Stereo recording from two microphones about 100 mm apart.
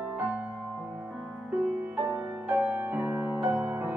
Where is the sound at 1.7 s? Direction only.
20° right (ahead or behind).